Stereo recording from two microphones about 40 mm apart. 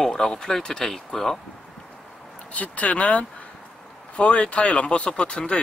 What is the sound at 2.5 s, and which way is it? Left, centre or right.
Speech, left.